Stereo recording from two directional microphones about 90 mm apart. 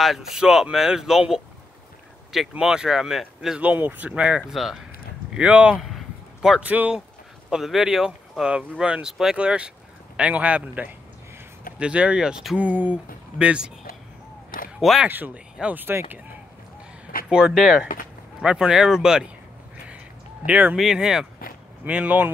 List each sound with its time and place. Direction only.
0.0 s speech: 5° right (ahead or behind)
2.5 s speech: 10° right (ahead or behind)
5.3 s speech: 15° right (ahead or behind)
5.8 s a sound: centre (ahead or behind)
6.6 s speech: 15° right (ahead or behind)
7.4 s speech: centre (ahead or behind)
14.8 s speech: 5° right (ahead or behind)
15.0 s speech: 20° right (ahead or behind)
17.3 s speech: 10° right (ahead or behind)
20.4 s speech: 20° right (ahead or behind)
20.7 s speech: 5° right (ahead or behind)